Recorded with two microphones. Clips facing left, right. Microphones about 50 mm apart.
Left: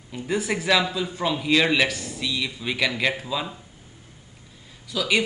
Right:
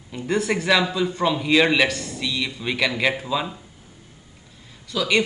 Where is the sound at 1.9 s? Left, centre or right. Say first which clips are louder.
Right 2 dB; centre.